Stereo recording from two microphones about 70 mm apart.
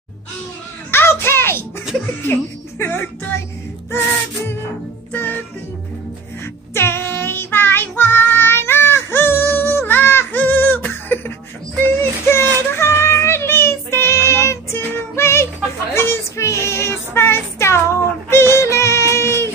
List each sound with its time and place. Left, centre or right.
0.9 s music: left
2.2 s child singing: left
5.1 s music: left
6.7 s child singing: left
11.8 s music: left
15.9 s child singing: left
18.3 s yodeling: left